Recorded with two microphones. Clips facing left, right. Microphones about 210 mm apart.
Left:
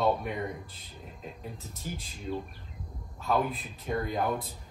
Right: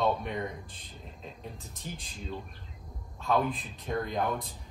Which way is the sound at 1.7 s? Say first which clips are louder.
Left 5 dB; centre (ahead or behind).